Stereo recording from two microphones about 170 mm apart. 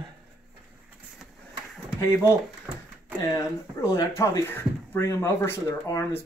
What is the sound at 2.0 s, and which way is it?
Speech, 20° left (ahead or behind).